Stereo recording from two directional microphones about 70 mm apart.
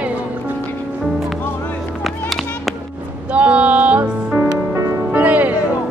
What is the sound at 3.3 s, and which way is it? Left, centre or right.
Music, centre.